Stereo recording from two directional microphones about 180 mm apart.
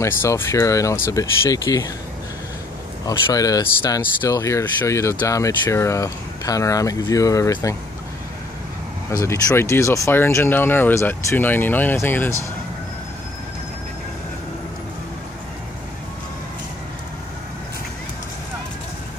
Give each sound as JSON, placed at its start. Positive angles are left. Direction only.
{"t": 0.0, "sound": "speech", "side_deg": 15}
{"t": 3.1, "sound": "speech", "side_deg": 20}
{"t": 9.1, "sound": "speech", "side_deg": 15}